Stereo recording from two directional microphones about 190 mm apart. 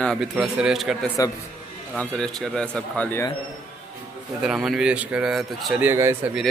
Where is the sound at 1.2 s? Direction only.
20° left (ahead or behind).